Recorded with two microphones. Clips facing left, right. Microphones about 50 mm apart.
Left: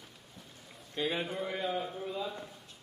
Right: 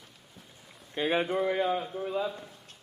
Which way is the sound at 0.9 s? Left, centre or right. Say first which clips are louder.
Right 6 dB; right.